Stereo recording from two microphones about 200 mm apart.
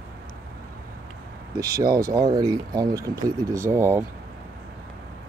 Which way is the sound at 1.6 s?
15° right (ahead or behind).